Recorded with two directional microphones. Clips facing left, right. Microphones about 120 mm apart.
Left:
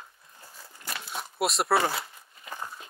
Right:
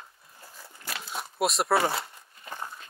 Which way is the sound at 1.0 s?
Centre (ahead or behind).